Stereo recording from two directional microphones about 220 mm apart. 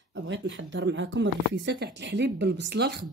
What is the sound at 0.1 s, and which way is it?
Speech, 55° right (ahead or behind).